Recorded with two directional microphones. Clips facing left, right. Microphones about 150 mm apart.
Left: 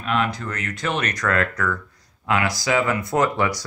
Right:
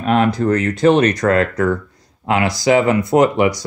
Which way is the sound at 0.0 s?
40° right (ahead or behind).